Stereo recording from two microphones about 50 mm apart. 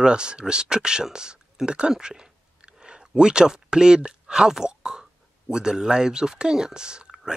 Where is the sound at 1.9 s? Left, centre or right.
Centre.